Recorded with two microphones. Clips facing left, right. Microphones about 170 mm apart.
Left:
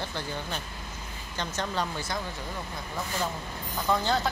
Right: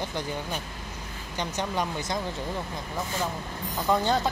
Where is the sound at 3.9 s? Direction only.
15° right (ahead or behind).